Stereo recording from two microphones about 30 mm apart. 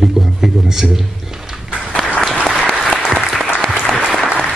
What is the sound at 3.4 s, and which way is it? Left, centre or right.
Applause, centre.